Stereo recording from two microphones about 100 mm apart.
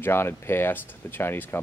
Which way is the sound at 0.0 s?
20° left (ahead or behind).